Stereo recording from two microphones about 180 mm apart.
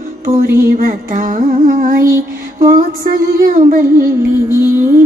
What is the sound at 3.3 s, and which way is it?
Music, 55° right (ahead or behind).